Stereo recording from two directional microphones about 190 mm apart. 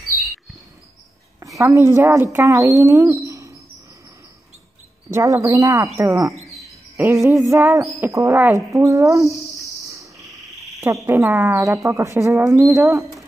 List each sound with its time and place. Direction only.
1.4 s a woman's voice: 15° right (ahead or behind)
5.1 s speech: 15° right (ahead or behind)
11.1 s speech: 10° right (ahead or behind)